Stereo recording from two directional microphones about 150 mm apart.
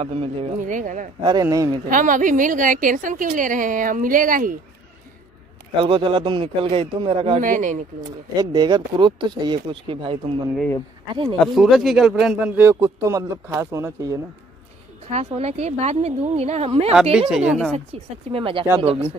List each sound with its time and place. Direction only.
0.0 s speech: 40° right (ahead or behind)
0.6 s a woman's voice: 60° right (ahead or behind)
1.2 s speech: 25° right (ahead or behind)
1.9 s a woman's voice: 60° right (ahead or behind)
5.9 s speech: 35° right (ahead or behind)
7.3 s a woman's voice: 60° right (ahead or behind)
8.4 s speech: 30° right (ahead or behind)
11.2 s speech: 5° left (ahead or behind); by 14.2 s 20° right (ahead or behind)
15.0 s a woman's voice: 45° right (ahead or behind)
16.9 s speech: 5° right (ahead or behind)
18.3 s speech: 35° right (ahead or behind)